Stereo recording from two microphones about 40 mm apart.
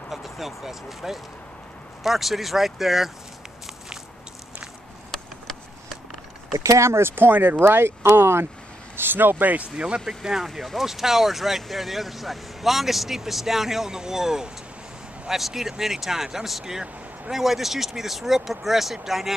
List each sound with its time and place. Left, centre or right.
0.1 s speech: centre
7.0 s speech: right
7.2 s speech: right
7.5 s speech: right
8.9 s speech: right
9.8 s speech: right
10.0 s speech: centre